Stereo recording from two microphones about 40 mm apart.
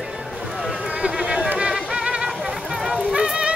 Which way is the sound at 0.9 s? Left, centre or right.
Right.